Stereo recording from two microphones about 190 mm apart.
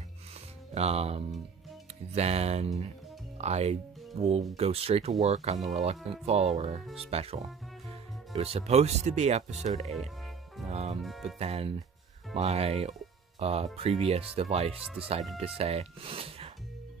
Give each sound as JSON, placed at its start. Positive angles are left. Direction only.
{"t": 0.7, "sound": "speech", "side_deg": -35}
{"t": 11.0, "sound": "speech", "side_deg": 0}
{"t": 11.3, "sound": "speech", "side_deg": -30}